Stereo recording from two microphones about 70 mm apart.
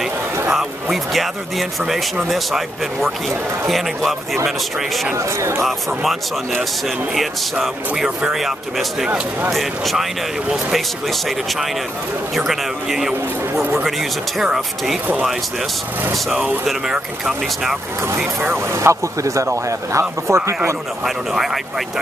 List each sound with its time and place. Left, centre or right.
0.0 s speech: centre
5.1 s speech: right
7.2 s speech: centre
13.6 s speech: right
13.8 s speech: centre
16.6 s speech: centre
18.4 s speech: right
18.8 s speech: right
21.0 s speech: centre